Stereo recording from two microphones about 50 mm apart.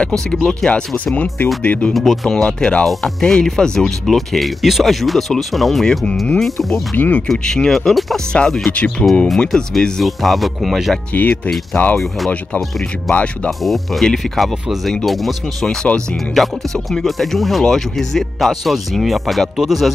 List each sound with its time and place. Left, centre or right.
0.4 s speech: centre
0.7 s speech: left
2.0 s speech: centre
7.0 s speech: left
7.2 s speech: centre
10.0 s speech: centre
11.1 s speech: left
13.1 s speech: left
13.5 s speech: centre
15.6 s speech: centre
16.4 s speech: centre